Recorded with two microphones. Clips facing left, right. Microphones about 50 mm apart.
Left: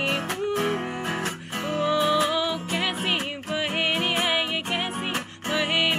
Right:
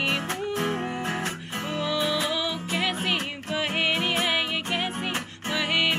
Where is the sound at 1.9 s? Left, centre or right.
Left.